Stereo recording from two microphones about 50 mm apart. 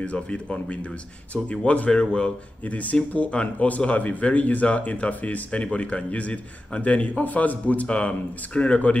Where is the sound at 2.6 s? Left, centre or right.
Left.